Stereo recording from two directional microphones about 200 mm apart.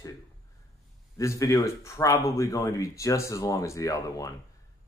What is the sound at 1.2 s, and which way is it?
Speech, 15° left (ahead or behind).